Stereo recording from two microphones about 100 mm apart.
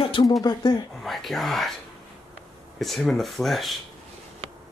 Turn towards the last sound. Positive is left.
turn(degrees=0)  # may be behind; listen again after turning